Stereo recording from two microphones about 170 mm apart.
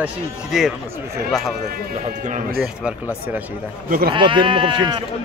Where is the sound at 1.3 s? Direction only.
Centre (ahead or behind).